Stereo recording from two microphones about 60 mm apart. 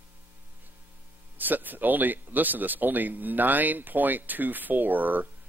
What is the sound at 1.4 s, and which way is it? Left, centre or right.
Speech, right.